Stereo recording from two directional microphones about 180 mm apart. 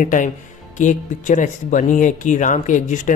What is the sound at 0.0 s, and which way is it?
Speech, 45° left (ahead or behind).